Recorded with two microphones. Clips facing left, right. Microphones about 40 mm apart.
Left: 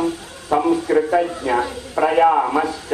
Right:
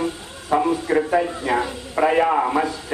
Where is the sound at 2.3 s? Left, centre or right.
Centre.